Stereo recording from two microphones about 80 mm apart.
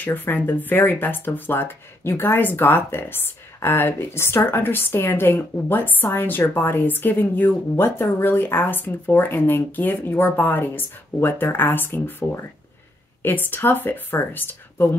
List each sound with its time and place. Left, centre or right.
0.0 s speech: left